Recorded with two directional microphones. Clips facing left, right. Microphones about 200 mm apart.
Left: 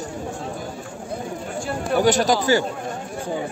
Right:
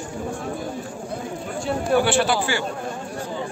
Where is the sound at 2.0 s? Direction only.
40° left (ahead or behind).